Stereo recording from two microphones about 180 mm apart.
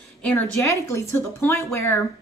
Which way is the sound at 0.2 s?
10° left (ahead or behind).